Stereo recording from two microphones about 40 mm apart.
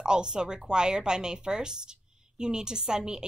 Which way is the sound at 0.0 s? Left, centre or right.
Centre.